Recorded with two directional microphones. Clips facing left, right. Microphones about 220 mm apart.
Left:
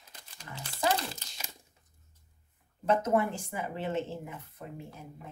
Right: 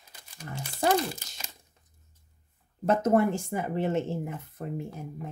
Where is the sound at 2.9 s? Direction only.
45° right (ahead or behind).